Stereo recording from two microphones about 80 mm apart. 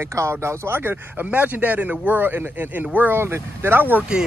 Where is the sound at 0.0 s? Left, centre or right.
Right.